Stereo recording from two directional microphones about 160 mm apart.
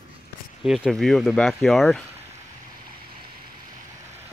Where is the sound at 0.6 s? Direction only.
Centre (ahead or behind).